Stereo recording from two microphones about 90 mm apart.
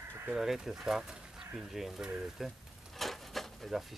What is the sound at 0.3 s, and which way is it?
Speech, 5° right (ahead or behind).